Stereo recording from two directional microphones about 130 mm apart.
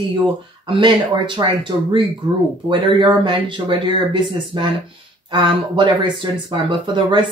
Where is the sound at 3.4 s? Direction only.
35° right (ahead or behind).